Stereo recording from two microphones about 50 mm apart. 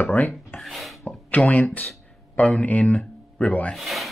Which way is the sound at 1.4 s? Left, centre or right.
Left.